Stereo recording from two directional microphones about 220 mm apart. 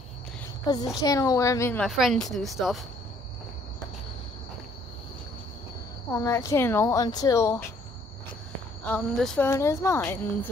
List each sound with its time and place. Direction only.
0.7 s speech: 15° left (ahead or behind)
1.9 s speech: centre (ahead or behind)
6.1 s speech: 15° left (ahead or behind)
8.8 s speech: 5° left (ahead or behind)